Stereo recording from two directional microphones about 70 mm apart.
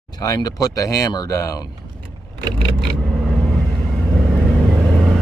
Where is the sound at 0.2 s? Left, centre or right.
Left.